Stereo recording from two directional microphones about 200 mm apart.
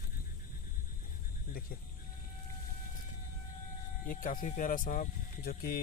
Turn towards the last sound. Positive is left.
turn(degrees=50)  # may be behind; listen again after turning